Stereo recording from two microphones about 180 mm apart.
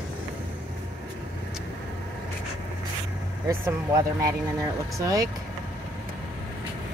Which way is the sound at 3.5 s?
20° right (ahead or behind).